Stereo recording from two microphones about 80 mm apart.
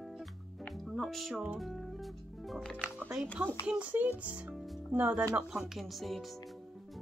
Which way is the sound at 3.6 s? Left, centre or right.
Centre.